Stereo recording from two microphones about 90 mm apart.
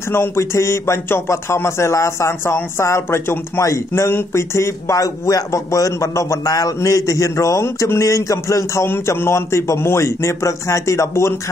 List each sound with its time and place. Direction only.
0.1 s a man's voice: 30° left (ahead or behind)
8.8 s a man's voice: 25° left (ahead or behind)